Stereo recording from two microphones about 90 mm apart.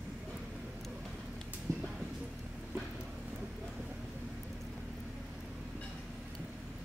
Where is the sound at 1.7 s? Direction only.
35° right (ahead or behind).